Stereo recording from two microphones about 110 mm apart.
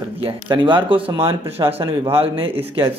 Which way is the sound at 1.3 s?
60° right (ahead or behind).